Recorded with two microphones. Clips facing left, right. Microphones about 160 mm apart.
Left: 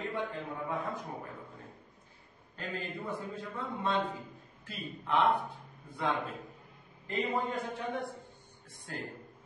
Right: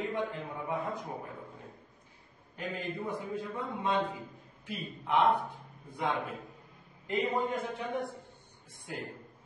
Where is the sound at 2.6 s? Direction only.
15° right (ahead or behind).